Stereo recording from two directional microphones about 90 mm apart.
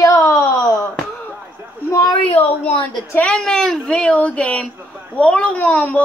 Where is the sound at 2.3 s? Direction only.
90° left.